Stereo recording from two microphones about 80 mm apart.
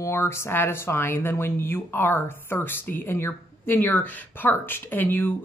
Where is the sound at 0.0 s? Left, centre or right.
Left.